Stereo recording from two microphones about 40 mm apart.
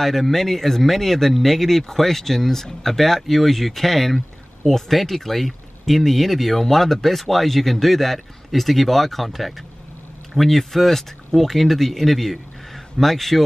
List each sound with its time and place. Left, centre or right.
0.0 s speech: centre